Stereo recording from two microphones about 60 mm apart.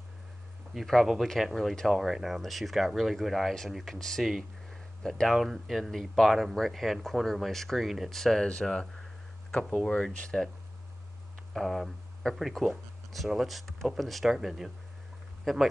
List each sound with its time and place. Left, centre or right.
0.7 s speech: centre
5.4 s speech: centre
10.3 s speech: centre
11.5 s speech: centre